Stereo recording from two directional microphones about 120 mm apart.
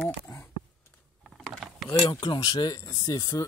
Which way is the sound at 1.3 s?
Centre (ahead or behind).